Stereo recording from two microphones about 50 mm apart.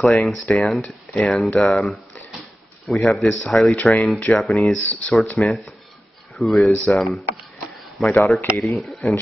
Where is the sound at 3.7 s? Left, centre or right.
Left.